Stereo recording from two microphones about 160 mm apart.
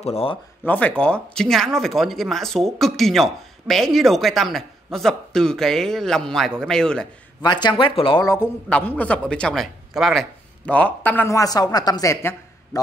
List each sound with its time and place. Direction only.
0.0 s speech: 40° left (ahead or behind)
0.7 s speech: 10° left (ahead or behind)
7.4 s speech: 30° left (ahead or behind)
8.2 s a man's voice: 20° left (ahead or behind)